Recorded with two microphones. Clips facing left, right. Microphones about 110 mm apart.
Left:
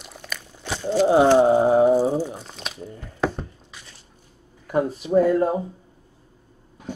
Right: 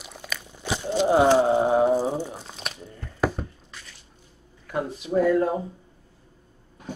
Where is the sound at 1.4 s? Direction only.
20° left (ahead or behind).